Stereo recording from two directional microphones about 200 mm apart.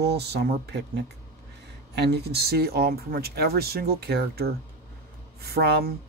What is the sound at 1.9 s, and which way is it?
Speech, 55° right (ahead or behind).